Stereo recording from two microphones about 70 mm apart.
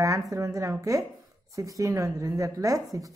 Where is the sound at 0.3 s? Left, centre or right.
Right.